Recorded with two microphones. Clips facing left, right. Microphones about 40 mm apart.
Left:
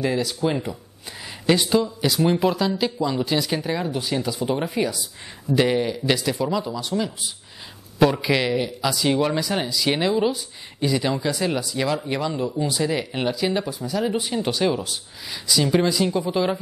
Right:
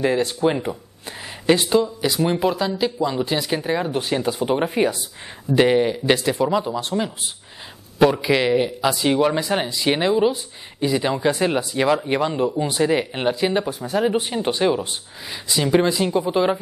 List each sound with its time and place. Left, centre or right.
0.2 s speech: right
2.0 s speech: centre
3.9 s speech: right
5.5 s speech: centre
8.0 s speech: centre; by 13.7 s right
13.7 s speech: right
14.3 s speech: centre